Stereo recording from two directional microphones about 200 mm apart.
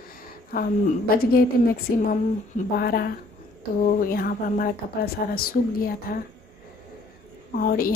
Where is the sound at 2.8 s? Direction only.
50° left (ahead or behind).